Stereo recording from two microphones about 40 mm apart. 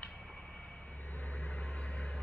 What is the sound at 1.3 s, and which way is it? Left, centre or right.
Vehicle, left.